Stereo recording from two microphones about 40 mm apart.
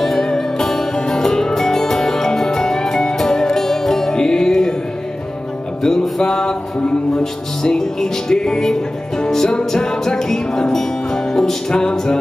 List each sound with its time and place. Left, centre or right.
0.2 s music: centre
5.8 s music: centre